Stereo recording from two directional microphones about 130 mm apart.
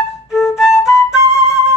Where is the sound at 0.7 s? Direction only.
20° left (ahead or behind).